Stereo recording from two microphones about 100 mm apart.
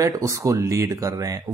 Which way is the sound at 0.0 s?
35° right (ahead or behind).